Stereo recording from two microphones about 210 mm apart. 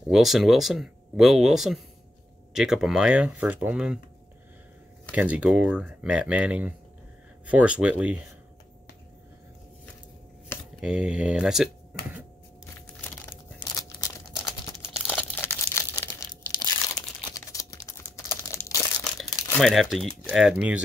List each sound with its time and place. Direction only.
0.1 s speech: centre (ahead or behind)
5.1 s speech: 5° right (ahead or behind)
10.8 s speech: 5° right (ahead or behind)
13.6 s crumpling: 15° left (ahead or behind)
17.3 s crumpling: 15° left (ahead or behind)
19.6 s speech: centre (ahead or behind)